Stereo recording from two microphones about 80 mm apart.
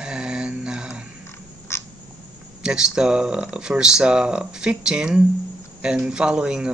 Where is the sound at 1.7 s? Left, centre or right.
Left.